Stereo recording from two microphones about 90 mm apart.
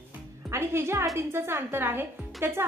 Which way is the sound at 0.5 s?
30° right (ahead or behind).